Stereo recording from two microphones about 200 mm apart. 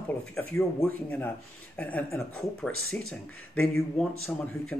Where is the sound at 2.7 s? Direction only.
90° left.